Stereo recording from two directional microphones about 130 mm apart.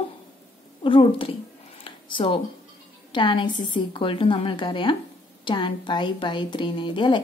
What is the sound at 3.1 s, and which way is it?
A woman's voice, 40° left (ahead or behind).